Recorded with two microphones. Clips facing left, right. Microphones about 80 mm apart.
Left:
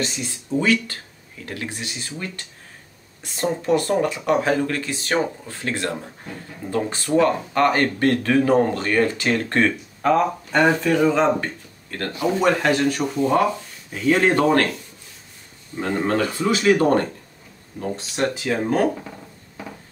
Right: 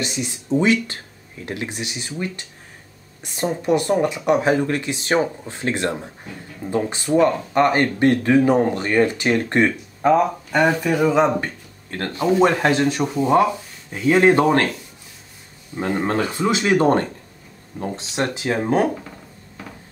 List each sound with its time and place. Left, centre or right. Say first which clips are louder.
0.0 s speech: right 1 dB; centre
10.5 s speech: left 1 dB; centre
11.9 s speech: right 3 dB; right
15.7 s speech: even; centre